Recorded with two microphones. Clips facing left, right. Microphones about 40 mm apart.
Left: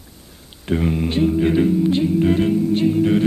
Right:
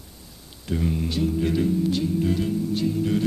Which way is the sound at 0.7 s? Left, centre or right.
Left.